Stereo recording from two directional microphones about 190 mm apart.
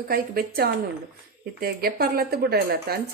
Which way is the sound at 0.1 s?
55° right (ahead or behind).